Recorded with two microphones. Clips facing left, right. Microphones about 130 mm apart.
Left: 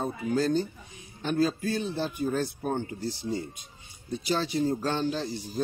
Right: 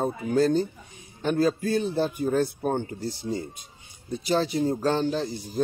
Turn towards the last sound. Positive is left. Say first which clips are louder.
# right 4 dB
turn(degrees=-45)  # may be behind; listen again after turning